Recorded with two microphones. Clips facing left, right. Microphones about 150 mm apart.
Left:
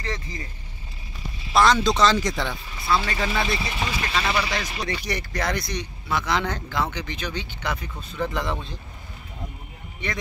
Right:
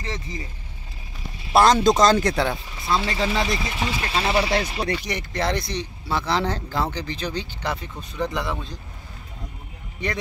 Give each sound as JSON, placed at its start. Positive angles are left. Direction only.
{"t": 0.0, "sound": "speech", "side_deg": -20}
{"t": 1.5, "sound": "speech", "side_deg": -40}
{"t": 2.9, "sound": "speech", "side_deg": -20}
{"t": 3.7, "sound": "speech", "side_deg": 0}
{"t": 4.0, "sound": "speech", "side_deg": -30}
{"t": 8.3, "sound": "speech", "side_deg": -10}